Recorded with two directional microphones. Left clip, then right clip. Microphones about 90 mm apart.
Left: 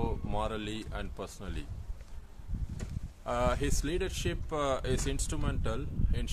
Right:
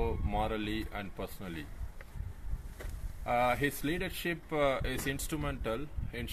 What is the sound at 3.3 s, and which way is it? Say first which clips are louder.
Speech: right 2 dB; 40° left (ahead or behind).